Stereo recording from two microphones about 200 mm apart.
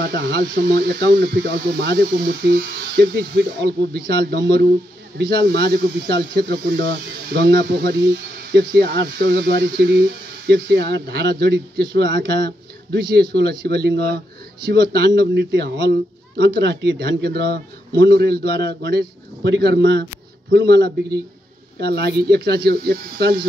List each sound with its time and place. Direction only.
0.0 s speech: 55° right (ahead or behind)